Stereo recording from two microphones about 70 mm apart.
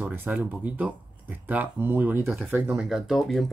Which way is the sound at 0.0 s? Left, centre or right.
Right.